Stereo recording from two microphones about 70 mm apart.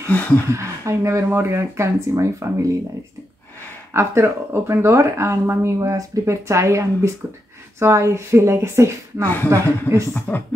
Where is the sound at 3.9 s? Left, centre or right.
Right.